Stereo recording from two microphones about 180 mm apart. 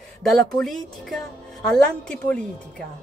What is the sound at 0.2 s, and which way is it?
A woman's voice, centre (ahead or behind).